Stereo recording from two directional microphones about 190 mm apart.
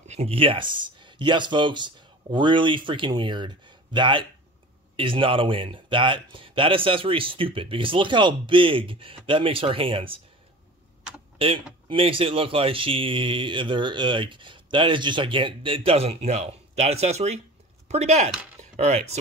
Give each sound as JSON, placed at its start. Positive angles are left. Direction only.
{"t": 0.1, "sound": "speech", "side_deg": -30}
{"t": 11.3, "sound": "speech", "side_deg": -30}